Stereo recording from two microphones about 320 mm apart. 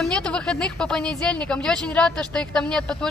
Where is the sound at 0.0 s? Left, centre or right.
Centre.